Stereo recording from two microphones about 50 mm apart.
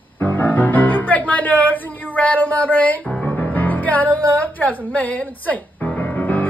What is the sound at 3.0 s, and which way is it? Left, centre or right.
Speech, left.